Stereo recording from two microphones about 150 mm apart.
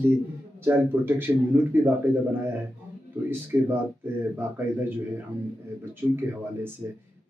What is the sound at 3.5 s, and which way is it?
Speech, 20° right (ahead or behind).